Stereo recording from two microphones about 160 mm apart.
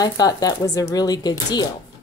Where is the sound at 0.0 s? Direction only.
25° left (ahead or behind).